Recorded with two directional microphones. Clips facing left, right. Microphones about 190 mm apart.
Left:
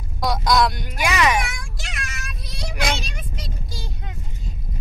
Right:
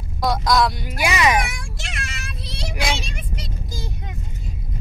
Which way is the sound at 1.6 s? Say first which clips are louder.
Right 1 dB; 25° right (ahead or behind).